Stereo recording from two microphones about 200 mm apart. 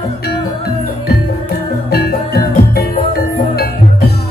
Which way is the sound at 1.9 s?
50° left (ahead or behind).